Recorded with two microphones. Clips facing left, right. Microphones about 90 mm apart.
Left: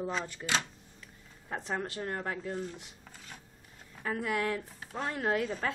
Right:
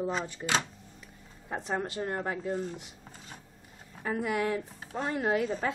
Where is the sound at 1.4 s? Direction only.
15° right (ahead or behind).